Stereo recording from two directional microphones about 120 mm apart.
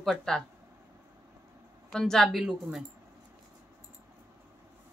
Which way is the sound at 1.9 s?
5° left (ahead or behind).